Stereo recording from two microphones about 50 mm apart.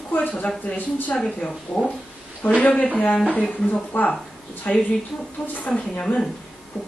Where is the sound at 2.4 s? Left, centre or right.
Left.